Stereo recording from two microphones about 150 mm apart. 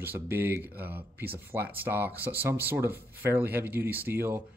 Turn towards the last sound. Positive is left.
turn(degrees=-15)  # may be behind; listen again after turning